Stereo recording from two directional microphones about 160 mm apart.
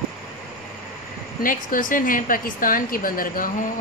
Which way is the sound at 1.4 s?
60° left (ahead or behind).